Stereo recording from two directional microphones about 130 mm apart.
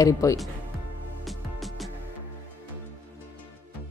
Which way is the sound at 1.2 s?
Centre (ahead or behind).